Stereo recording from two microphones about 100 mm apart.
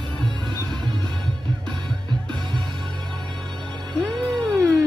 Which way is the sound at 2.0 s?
50° right (ahead or behind).